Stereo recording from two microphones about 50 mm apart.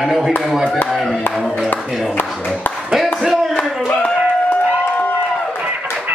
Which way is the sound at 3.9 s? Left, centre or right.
Left.